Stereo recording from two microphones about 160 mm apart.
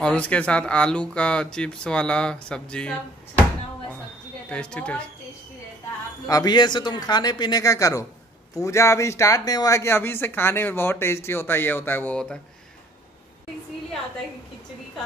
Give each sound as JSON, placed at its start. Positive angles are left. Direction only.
{"t": 0.0, "sound": "speech", "side_deg": 5}
{"t": 4.5, "sound": "speech", "side_deg": 5}
{"t": 6.2, "sound": "speech", "side_deg": 25}